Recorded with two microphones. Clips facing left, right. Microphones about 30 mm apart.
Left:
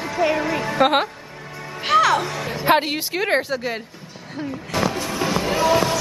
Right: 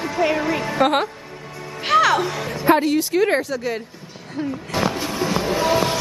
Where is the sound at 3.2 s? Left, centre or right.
Left.